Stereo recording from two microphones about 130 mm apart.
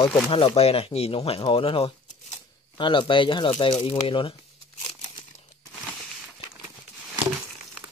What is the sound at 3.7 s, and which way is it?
Speech, 50° left (ahead or behind).